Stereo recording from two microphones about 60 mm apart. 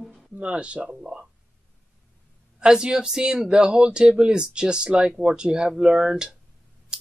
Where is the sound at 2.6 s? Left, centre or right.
Centre.